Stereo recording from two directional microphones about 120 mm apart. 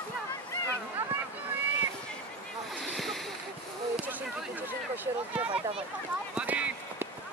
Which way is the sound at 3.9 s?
15° right (ahead or behind).